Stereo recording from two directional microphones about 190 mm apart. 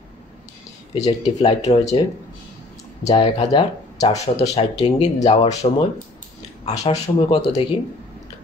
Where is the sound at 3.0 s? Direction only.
30° left (ahead or behind).